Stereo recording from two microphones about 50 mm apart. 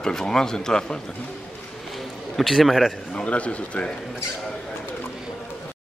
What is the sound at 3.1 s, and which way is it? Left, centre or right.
Speech, left.